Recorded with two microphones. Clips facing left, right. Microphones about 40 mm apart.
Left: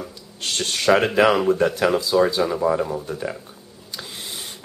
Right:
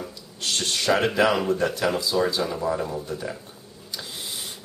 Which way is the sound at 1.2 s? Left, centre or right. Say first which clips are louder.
Left 4 dB; centre.